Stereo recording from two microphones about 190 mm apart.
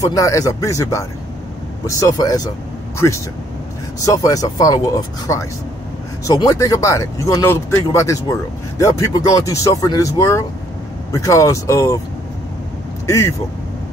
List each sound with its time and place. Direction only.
0.0 s speech: 15° left (ahead or behind)
4.0 s speech: 20° left (ahead or behind)
13.0 s speech: 15° left (ahead or behind)